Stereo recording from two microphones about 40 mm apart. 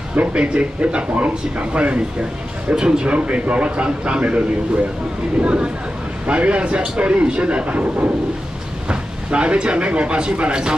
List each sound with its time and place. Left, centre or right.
0.1 s speech: right
5.4 s speech: right